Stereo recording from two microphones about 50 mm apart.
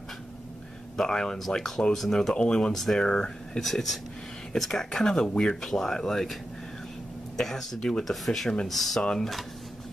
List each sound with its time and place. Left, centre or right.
0.9 s speech: centre
2.7 s speech: centre
7.3 s speech: centre